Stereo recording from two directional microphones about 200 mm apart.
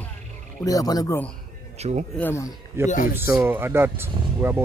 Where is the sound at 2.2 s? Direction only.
10° left (ahead or behind).